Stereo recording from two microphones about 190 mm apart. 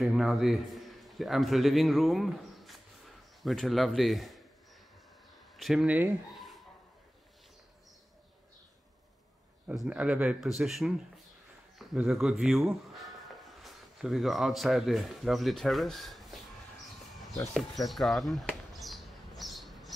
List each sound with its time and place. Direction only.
0.0 s a man's voice: centre (ahead or behind)
5.6 s speech: centre (ahead or behind)
9.7 s speech: 5° right (ahead or behind)
17.4 s a sound: centre (ahead or behind)